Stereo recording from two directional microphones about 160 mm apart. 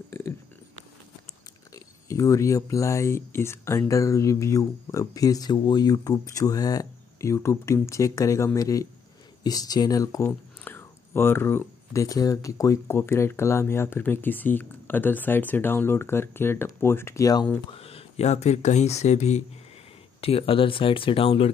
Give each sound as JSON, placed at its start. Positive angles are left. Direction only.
{"t": 2.0, "sound": "speech", "side_deg": 20}
{"t": 17.7, "sound": "speech", "side_deg": 40}